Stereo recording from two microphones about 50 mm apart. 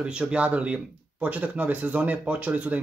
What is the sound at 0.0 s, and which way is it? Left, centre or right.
Speech, centre.